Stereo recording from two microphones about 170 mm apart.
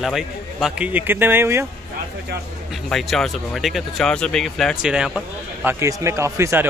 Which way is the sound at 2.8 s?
Centre (ahead or behind).